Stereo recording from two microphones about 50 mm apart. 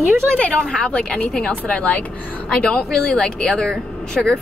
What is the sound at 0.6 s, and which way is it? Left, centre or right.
Speech, centre.